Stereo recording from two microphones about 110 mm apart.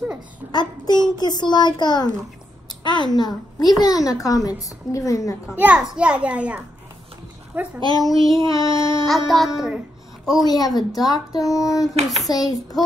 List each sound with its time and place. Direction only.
0.5 s a woman's voice: 40° left (ahead or behind)
5.6 s a child's voice: 10° right (ahead or behind)
7.8 s a woman's voice: 35° left (ahead or behind)
9.3 s a woman's voice: centre (ahead or behind)
10.4 s a woman's voice: 35° left (ahead or behind)